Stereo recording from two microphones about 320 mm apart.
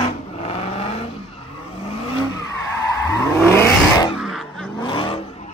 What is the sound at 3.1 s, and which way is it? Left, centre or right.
Vehicle, centre.